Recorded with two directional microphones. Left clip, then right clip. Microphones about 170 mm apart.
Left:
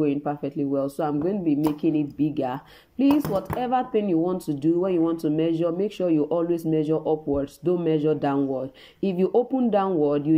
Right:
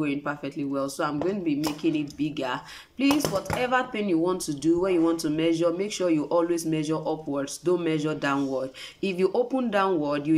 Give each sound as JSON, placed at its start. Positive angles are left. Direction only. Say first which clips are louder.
{"t": 0.0, "sound": "speech", "louder": "left 4 dB", "side_deg": 20}